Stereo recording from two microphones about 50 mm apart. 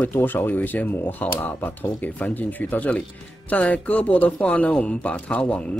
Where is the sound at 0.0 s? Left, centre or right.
Left.